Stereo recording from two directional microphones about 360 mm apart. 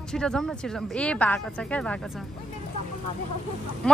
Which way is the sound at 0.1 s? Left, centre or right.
Centre.